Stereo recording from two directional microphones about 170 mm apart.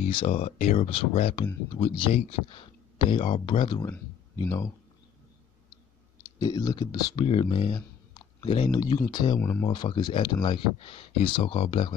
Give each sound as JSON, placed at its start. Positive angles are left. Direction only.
{"t": 0.0, "sound": "speech", "side_deg": 35}
{"t": 6.4, "sound": "speech", "side_deg": 20}
{"t": 9.4, "sound": "speech", "side_deg": 10}
{"t": 9.7, "sound": "speech", "side_deg": 25}